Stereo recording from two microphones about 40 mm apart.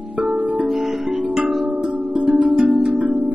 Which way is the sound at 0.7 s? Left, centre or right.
Centre.